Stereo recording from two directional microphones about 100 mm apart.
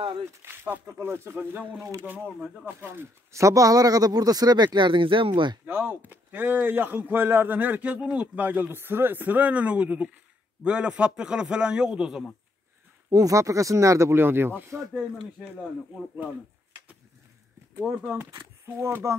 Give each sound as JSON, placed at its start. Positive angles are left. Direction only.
{"t": 0.2, "sound": "a man's voice", "side_deg": -20}
{"t": 1.8, "sound": "a man's voice", "side_deg": -30}
{"t": 2.0, "sound": "a man's voice", "side_deg": -15}
{"t": 5.7, "sound": "a man's voice", "side_deg": -20}
{"t": 13.1, "sound": "a man's voice", "side_deg": -35}
{"t": 17.7, "sound": "a man's voice", "side_deg": -20}